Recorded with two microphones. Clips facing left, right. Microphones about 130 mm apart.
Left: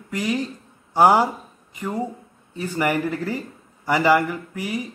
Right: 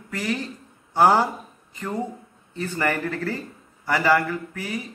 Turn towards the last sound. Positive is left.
turn(degrees=15)  # may be behind; listen again after turning